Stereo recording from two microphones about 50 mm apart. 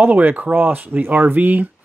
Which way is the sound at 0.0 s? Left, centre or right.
Right.